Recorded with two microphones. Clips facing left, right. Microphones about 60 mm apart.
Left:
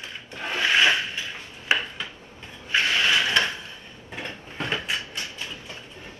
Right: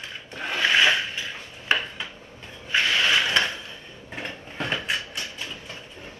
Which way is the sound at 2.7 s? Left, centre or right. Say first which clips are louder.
Even; right.